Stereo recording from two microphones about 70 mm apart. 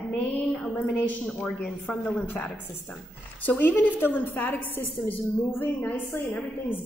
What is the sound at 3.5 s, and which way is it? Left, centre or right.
A woman's voice, left.